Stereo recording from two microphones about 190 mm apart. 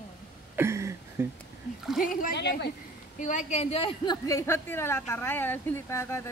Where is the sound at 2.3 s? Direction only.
65° left (ahead or behind).